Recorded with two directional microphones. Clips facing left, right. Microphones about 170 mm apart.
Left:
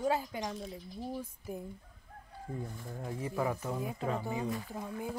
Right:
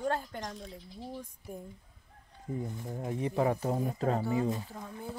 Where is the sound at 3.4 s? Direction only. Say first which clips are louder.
Right 5 dB; 35° right (ahead or behind).